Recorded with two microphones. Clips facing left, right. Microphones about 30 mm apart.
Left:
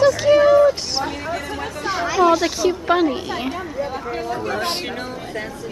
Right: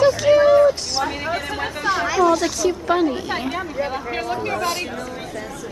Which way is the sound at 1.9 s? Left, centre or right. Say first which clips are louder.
Right 2 dB; centre.